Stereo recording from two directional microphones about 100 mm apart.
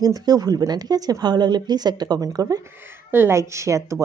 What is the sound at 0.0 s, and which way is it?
A woman's voice, 40° right (ahead or behind).